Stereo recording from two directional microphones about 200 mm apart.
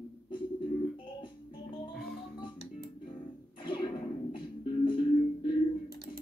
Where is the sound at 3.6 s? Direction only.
25° left (ahead or behind).